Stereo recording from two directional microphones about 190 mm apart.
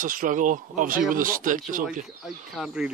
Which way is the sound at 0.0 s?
45° right (ahead or behind).